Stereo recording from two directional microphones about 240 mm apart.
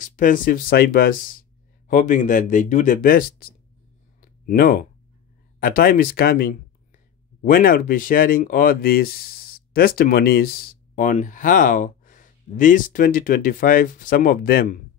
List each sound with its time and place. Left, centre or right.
0.0 s speech: left
4.2 s a sound: left
5.6 s speech: left